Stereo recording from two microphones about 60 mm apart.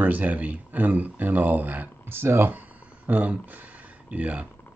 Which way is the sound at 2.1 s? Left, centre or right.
Right.